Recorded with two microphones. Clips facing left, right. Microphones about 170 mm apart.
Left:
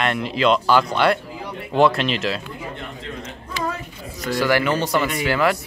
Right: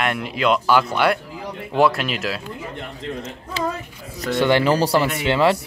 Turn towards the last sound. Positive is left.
turn(degrees=-25)  # may be behind; listen again after turning